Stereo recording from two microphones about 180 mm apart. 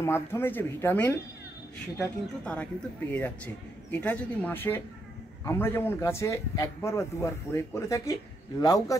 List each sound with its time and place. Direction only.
0.0 s speech: 15° left (ahead or behind)
2.4 s speech: 5° left (ahead or behind)